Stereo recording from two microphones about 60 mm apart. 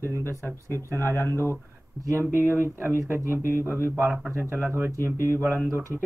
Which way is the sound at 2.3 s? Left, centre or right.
Right.